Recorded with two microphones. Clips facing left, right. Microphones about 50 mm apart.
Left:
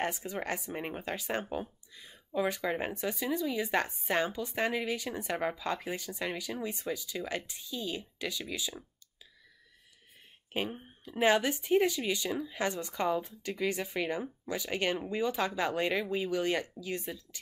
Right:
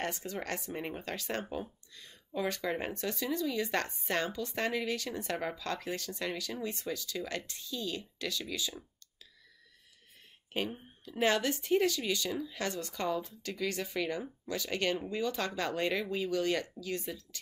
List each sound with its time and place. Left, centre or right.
0.0 s speech: centre
10.5 s speech: centre